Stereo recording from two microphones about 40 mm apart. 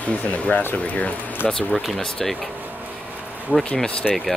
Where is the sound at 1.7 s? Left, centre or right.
Centre.